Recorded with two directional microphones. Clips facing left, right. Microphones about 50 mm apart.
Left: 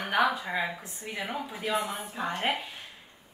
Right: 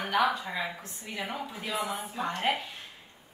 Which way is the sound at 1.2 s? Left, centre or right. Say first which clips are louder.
Left 3 dB; centre.